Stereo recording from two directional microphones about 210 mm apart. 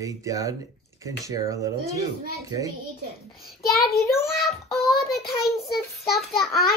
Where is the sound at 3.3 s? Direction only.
Centre (ahead or behind).